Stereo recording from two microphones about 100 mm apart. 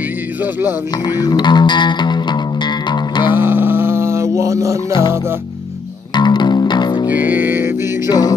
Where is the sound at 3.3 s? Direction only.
20° right (ahead or behind).